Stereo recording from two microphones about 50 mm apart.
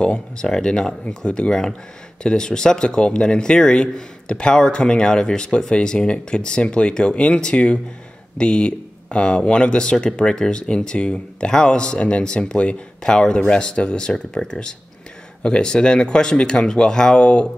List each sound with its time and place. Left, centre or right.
0.0 s speech: centre